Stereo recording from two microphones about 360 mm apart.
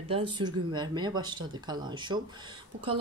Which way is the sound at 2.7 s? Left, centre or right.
Right.